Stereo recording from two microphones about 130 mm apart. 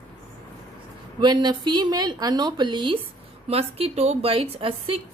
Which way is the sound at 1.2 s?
35° right (ahead or behind).